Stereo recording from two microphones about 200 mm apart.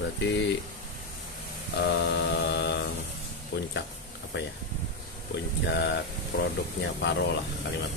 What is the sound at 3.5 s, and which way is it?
Speech, 55° left (ahead or behind).